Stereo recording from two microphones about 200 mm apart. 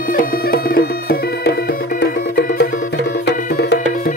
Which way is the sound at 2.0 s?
60° left (ahead or behind).